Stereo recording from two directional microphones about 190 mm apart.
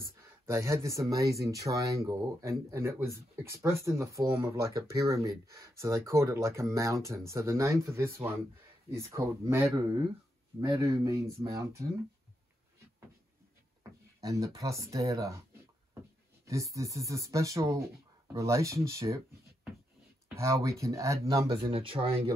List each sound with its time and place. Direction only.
0.5 s speech: 15° right (ahead or behind)
14.2 s speech: 15° right (ahead or behind)
16.4 s speech: 15° right (ahead or behind)
21.7 s speech: 30° right (ahead or behind)